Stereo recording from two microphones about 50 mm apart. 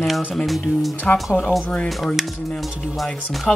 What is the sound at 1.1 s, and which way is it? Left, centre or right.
Speech, left.